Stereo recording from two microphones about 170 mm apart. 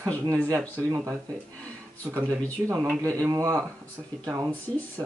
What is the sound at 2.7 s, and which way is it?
Speech, 10° right (ahead or behind).